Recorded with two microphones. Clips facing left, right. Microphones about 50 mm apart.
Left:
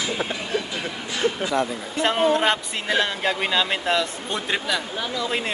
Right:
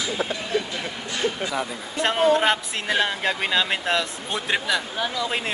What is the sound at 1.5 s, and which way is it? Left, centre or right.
Speech, centre.